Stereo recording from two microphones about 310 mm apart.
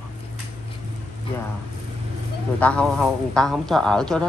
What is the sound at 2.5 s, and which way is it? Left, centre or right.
A woman's voice, centre.